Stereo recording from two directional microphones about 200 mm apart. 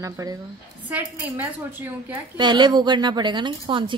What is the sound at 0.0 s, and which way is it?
A woman's voice, 15° right (ahead or behind).